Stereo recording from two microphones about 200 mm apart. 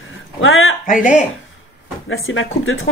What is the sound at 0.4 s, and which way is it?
Speech, 80° left.